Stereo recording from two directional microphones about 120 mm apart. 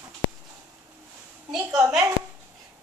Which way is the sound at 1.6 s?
30° right (ahead or behind).